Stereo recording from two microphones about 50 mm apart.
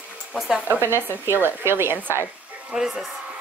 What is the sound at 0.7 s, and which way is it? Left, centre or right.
A woman's voice, right.